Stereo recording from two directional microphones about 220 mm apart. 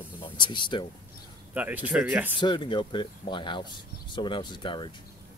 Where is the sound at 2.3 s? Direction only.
20° left (ahead or behind).